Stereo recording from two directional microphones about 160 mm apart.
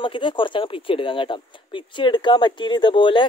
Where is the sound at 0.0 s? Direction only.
30° left (ahead or behind).